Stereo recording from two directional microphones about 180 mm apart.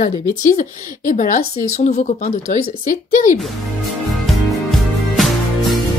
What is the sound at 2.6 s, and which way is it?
Speech, 50° left (ahead or behind).